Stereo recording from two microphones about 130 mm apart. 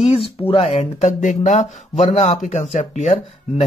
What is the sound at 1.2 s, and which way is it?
Speech, 70° left (ahead or behind).